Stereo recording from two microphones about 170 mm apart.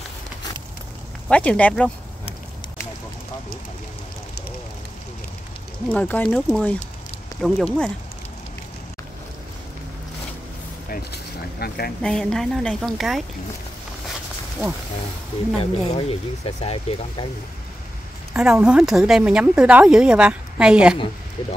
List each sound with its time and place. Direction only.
1.3 s speech: 5° left (ahead or behind)
5.9 s a woman's voice: 10° left (ahead or behind)
11.6 s speech: 65° left (ahead or behind)
12.0 s a woman's voice: 5° left (ahead or behind)
15.6 s speech: 35° left (ahead or behind)
18.3 s a woman's voice: 5° right (ahead or behind)